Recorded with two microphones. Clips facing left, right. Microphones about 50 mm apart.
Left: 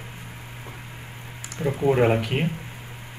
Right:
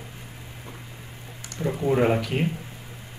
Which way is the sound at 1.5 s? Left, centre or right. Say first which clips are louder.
Left 1 dB; centre.